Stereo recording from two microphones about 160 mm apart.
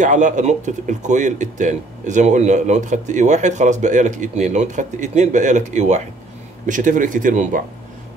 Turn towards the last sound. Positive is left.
turn(degrees=-55)  # may be behind; listen again after turning